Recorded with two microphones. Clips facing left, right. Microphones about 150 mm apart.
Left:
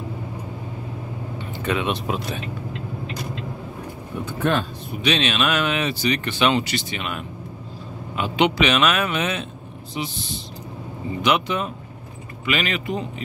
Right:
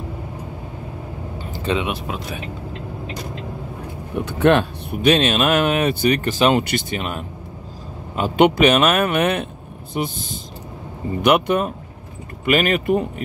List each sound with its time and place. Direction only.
1.5 s vehicle: 30° right (ahead or behind)
1.9 s speech: 5° right (ahead or behind)
4.2 s speech: 70° right (ahead or behind); by 7.2 s 40° right (ahead or behind)
8.2 s speech: 50° right (ahead or behind)
11.2 s speech: 55° right (ahead or behind)